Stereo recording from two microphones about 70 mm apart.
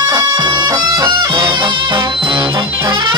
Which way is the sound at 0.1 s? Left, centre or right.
Right.